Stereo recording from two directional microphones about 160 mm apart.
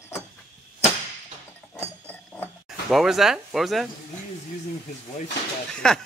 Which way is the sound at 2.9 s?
Centre (ahead or behind).